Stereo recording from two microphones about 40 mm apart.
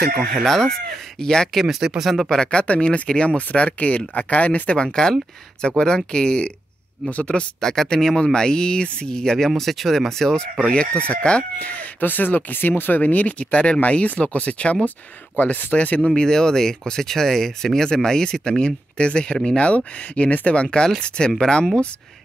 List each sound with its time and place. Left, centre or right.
0.5 s speech: centre
1.7 s speech: centre
2.2 s speech: left
4.8 s speech: centre
7.6 s speech: centre
9.6 s speech: centre
10.7 s speech: left
12.0 s speech: left
16.2 s speech: centre; by 20.6 s left
20.6 s speech: left